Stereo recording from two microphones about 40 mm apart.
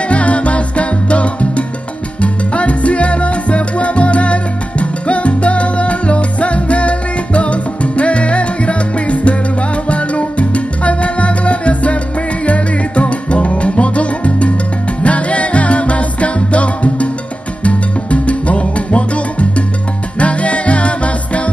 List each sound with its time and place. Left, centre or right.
0.1 s salsa music: left
15.0 s music: left
17.6 s salsa music: left
20.2 s music: left